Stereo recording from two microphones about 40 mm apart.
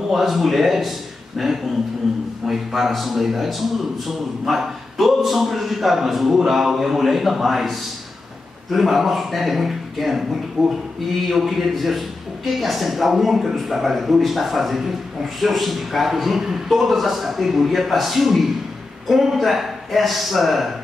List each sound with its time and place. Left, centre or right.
0.1 s a man's voice: centre